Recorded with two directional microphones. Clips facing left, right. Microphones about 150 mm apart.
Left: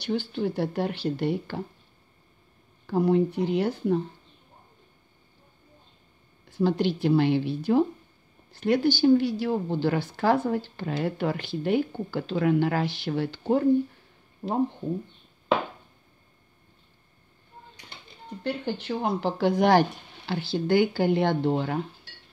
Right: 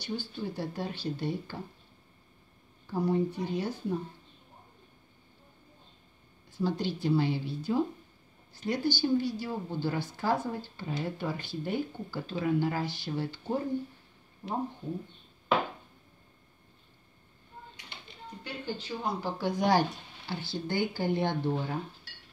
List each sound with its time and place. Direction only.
0.0 s speech: 75° left (ahead or behind)
2.9 s speech: 75° left (ahead or behind)
6.6 s speech: 75° left (ahead or behind)
18.4 s speech: 60° left (ahead or behind); by 21.7 s 90° left